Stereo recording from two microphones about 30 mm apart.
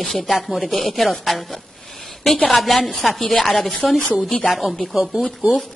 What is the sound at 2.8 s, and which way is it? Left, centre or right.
A woman's voice, centre.